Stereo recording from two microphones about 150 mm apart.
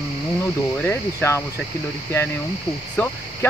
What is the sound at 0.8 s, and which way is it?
Speech, 15° left (ahead or behind).